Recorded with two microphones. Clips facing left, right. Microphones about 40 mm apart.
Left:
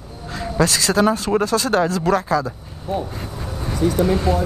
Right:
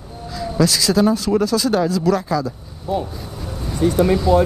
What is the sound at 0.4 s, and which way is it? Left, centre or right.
Speech, left.